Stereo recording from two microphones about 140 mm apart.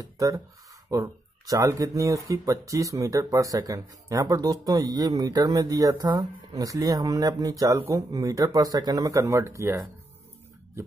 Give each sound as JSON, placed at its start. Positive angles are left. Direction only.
{"t": 0.0, "sound": "speech", "side_deg": -25}